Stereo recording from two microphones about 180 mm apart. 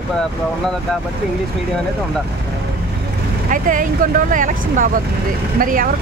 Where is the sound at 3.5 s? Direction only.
50° right (ahead or behind).